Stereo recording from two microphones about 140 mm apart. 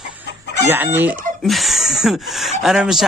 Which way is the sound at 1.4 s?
Centre (ahead or behind).